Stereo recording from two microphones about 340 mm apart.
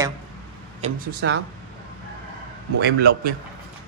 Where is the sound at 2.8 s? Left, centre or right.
Right.